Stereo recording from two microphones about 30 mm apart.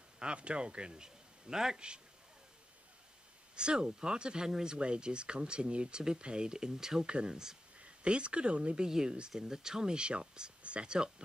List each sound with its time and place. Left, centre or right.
0.2 s a man's voice: right; by 1.8 s centre
3.5 s speech: right
7.1 s speech: right
8.8 s speech: right